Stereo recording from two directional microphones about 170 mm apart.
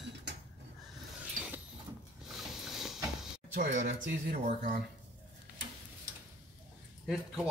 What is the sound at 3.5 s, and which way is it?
Speech, 50° right (ahead or behind).